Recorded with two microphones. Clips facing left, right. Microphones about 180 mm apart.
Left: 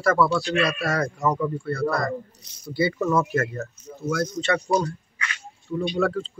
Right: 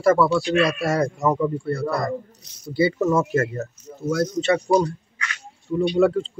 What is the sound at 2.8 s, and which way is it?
Speech, 25° right (ahead or behind).